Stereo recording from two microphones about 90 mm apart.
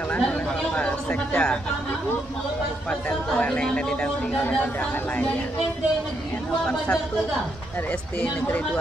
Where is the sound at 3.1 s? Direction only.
10° left (ahead or behind).